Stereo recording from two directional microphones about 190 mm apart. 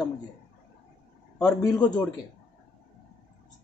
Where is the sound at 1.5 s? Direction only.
20° left (ahead or behind).